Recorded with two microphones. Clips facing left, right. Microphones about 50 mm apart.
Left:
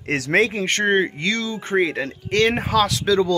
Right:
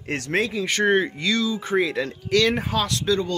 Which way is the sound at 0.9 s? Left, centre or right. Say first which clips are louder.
Left 1 dB; left.